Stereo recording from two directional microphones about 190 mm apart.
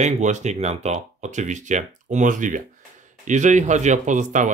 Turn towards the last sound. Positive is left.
turn(degrees=-40)  # may be behind; listen again after turning